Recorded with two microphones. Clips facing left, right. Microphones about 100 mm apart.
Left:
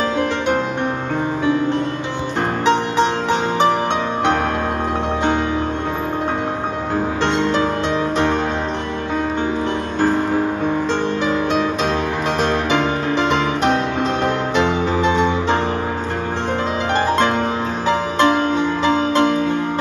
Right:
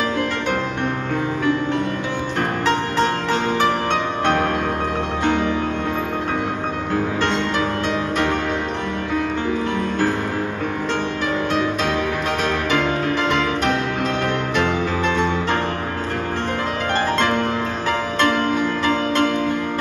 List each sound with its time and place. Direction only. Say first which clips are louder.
2.6 s music: left 4 dB; 20° left (ahead or behind)
12.4 s music: left 1 dB; 25° left (ahead or behind)
17.8 s music: left 5 dB; 20° left (ahead or behind)